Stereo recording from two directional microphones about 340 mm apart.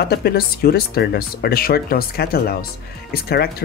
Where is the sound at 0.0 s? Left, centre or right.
Left.